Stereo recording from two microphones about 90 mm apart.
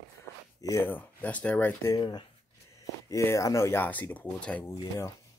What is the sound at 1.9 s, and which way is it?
Speech, 50° left (ahead or behind).